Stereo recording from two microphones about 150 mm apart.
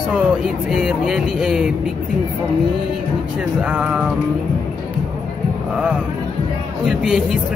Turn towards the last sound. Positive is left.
turn(degrees=-5)  # may be behind; listen again after turning